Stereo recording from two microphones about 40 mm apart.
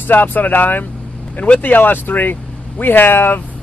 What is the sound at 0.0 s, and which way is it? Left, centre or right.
Speech, left.